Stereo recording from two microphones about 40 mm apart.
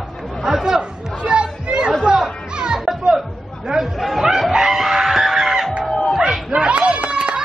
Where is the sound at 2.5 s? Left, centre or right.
Centre.